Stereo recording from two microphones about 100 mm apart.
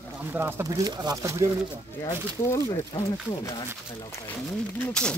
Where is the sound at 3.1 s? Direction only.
45° left (ahead or behind).